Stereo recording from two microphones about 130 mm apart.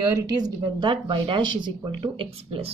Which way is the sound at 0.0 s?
30° right (ahead or behind).